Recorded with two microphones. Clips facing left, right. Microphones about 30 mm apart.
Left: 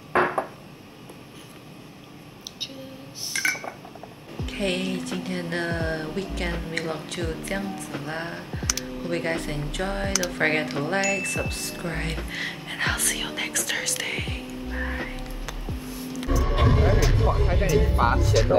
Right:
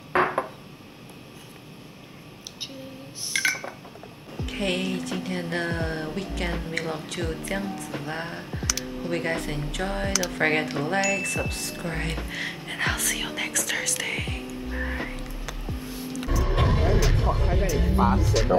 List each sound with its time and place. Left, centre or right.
0.1 s a sound: centre
4.4 s music: centre
17.9 s speech: left
18.5 s music: right